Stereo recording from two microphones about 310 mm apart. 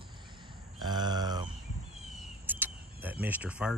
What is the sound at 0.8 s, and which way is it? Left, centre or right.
Speech, centre.